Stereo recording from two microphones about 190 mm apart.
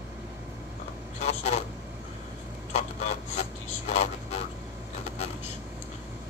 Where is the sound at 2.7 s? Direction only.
35° left (ahead or behind).